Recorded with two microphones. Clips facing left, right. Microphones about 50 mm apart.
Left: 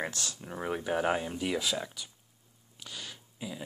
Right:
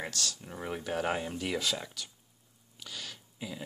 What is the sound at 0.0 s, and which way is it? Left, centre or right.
Speech, left.